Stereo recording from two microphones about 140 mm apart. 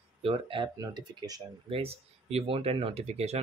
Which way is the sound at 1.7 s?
45° right (ahead or behind).